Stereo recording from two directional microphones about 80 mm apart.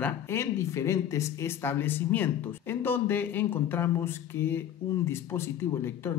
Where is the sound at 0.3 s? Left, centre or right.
Left.